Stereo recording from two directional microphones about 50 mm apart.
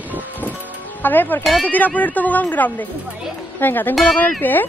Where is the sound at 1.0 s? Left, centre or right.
Left.